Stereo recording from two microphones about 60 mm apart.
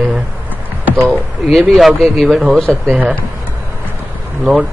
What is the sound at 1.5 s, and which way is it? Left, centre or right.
Speech, centre.